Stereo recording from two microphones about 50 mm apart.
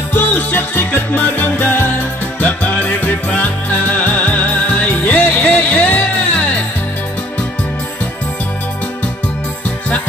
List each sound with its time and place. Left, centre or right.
0.1 s music: left